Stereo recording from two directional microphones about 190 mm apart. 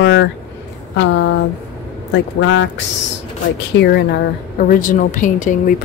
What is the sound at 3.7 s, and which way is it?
Speech, 60° left (ahead or behind).